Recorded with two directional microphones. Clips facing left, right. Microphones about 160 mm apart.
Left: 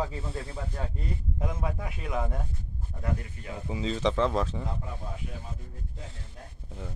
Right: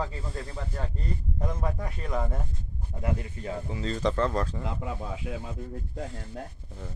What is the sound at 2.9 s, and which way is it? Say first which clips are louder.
Speech: right 4 dB; 20° right (ahead or behind).